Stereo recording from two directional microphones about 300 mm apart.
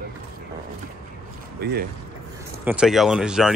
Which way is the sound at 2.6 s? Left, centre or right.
Centre.